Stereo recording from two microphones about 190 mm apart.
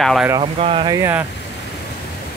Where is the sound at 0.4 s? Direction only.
30° right (ahead or behind).